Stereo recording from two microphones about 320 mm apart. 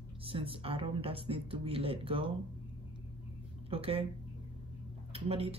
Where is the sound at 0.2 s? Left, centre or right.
Centre.